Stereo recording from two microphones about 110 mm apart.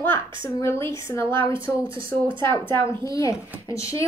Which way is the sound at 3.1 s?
30° left (ahead or behind).